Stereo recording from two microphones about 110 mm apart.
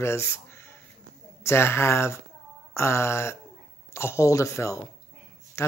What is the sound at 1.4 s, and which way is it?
Speech, 25° left (ahead or behind).